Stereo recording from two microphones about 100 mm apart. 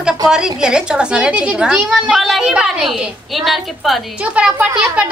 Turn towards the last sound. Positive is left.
turn(degrees=-10)  # may be behind; listen again after turning